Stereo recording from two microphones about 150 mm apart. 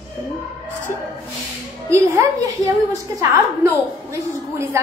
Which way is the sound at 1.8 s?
20° right (ahead or behind).